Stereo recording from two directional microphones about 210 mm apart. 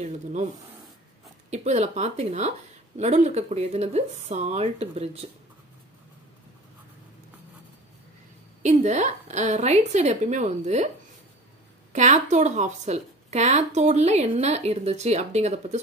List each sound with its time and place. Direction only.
0.0 s speech: 35° right (ahead or behind)
1.5 s speech: 35° right (ahead or behind)
8.6 s speech: 35° right (ahead or behind)
11.9 s speech: 35° right (ahead or behind)